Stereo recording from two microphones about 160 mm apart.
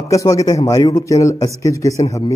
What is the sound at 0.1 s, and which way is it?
A man's voice, 20° left (ahead or behind).